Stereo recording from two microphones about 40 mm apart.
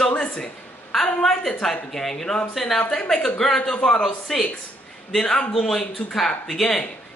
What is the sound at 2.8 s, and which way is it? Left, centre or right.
Speech, left.